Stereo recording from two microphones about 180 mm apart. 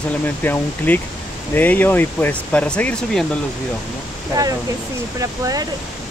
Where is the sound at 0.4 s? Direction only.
10° left (ahead or behind).